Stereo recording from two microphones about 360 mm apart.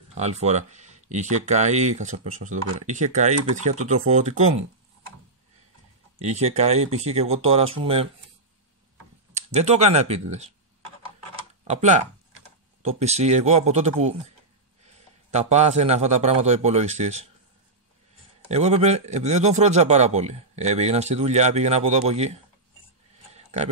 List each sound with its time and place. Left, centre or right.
0.1 s speech: centre
6.2 s a man's voice: centre
9.5 s a man's voice: centre
11.6 s a man's voice: centre
15.3 s a man's voice: centre
18.5 s a man's voice: centre
23.3 s a sound: centre